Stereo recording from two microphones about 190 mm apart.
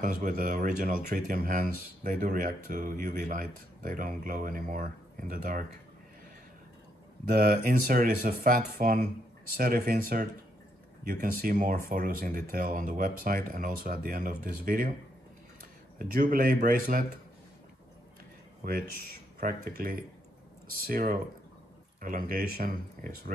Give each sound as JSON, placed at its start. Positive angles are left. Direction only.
{"t": 0.0, "sound": "speech", "side_deg": -50}
{"t": 7.2, "sound": "speech", "side_deg": -50}
{"t": 16.0, "sound": "speech", "side_deg": -50}
{"t": 18.6, "sound": "speech", "side_deg": -50}